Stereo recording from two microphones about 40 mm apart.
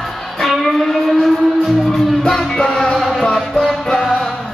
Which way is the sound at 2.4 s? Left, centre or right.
Centre.